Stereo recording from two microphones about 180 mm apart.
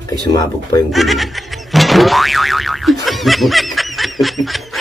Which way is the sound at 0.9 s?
Centre (ahead or behind).